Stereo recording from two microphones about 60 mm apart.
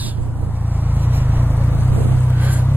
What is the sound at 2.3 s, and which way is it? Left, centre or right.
Vehicle, right.